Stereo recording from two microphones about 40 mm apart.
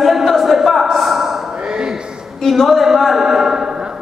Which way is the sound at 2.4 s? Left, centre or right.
Centre.